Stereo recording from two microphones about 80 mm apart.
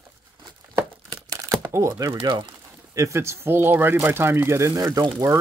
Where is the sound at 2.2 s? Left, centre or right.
Right.